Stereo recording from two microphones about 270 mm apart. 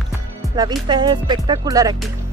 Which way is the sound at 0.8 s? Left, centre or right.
Centre.